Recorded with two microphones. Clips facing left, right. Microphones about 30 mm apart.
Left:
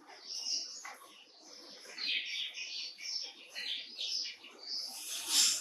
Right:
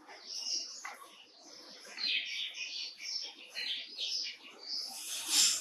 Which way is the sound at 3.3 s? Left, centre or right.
Centre.